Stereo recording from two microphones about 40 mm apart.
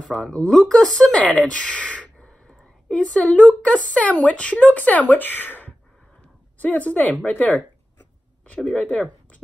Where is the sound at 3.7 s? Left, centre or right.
Left.